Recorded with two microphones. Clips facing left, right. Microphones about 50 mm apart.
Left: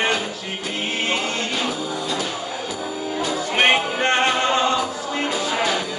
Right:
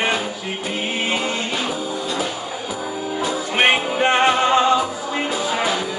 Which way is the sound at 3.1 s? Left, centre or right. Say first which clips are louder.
Right 1 dB; centre.